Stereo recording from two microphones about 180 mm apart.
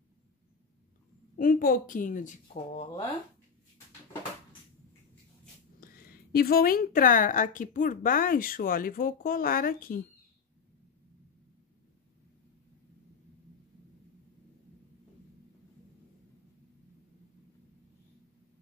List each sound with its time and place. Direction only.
1.3 s a woman's voice: 50° left (ahead or behind)
5.8 s a woman's voice: 55° left (ahead or behind)